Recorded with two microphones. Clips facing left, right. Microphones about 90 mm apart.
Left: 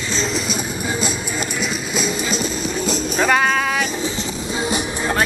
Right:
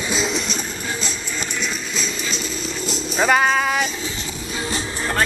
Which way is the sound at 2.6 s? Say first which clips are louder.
Left 5 dB; 50° left (ahead or behind).